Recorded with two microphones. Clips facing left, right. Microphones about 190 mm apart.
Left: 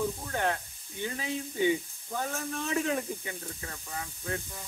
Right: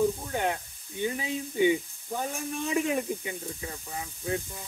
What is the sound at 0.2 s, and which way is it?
Snake, 15° right (ahead or behind).